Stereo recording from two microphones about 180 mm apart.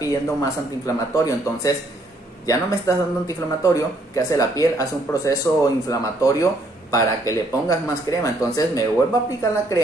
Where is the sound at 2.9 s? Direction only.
15° left (ahead or behind).